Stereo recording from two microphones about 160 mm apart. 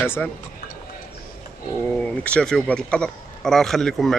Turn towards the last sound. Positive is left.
turn(degrees=0)  # may be behind; listen again after turning